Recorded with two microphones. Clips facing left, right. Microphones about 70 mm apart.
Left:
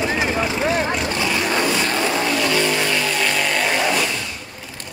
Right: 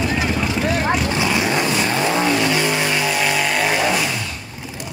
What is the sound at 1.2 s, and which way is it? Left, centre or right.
Vehicle, centre.